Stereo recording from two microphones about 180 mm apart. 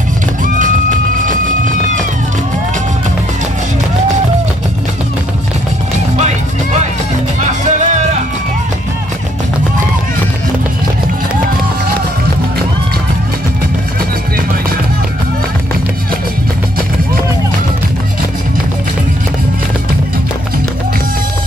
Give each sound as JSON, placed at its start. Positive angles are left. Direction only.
{"t": 1.2, "sound": "music", "side_deg": -45}
{"t": 6.1, "sound": "music", "side_deg": -40}